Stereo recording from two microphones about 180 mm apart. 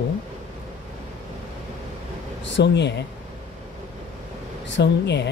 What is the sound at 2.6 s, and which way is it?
Speech, 75° left (ahead or behind).